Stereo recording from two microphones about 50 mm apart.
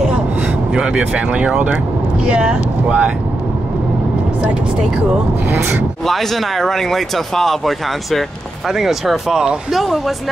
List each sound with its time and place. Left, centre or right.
0.7 s speech: centre
6.0 s speech: centre